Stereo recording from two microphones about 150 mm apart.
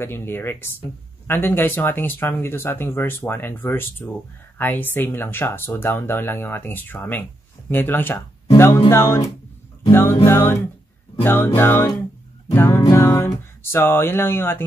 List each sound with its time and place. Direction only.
0.0 s speech: 15° left (ahead or behind)